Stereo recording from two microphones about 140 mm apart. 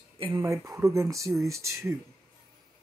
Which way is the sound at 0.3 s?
20° right (ahead or behind).